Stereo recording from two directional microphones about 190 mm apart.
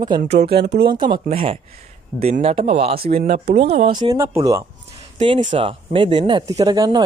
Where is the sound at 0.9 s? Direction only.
25° right (ahead or behind).